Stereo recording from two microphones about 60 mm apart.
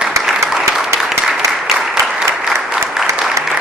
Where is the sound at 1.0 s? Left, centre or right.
Centre.